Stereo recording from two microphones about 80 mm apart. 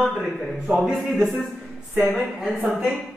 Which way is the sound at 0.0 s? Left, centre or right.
Centre.